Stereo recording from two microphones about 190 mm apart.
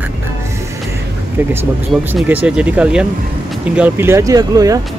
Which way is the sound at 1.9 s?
5° right (ahead or behind).